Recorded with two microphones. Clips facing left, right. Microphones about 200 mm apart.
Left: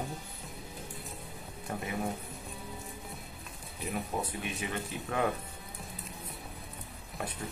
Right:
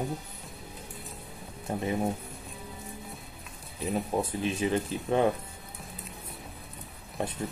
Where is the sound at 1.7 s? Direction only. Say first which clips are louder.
Right 6 dB; 25° right (ahead or behind).